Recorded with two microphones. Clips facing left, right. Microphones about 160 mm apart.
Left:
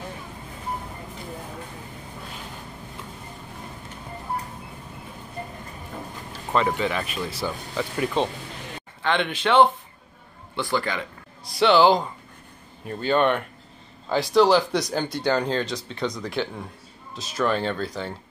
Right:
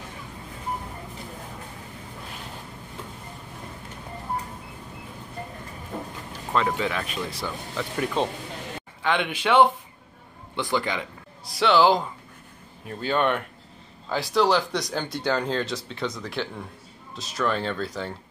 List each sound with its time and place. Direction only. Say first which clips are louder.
6.5 s speech: left 2 dB; centre (ahead or behind)
9.0 s speech: left 1 dB; 10° right (ahead or behind)
11.4 s speech: left 2 dB; centre (ahead or behind)